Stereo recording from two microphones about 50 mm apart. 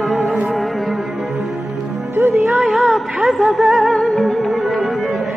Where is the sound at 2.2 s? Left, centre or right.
Right.